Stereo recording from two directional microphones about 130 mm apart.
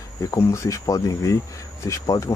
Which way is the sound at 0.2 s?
25° left (ahead or behind).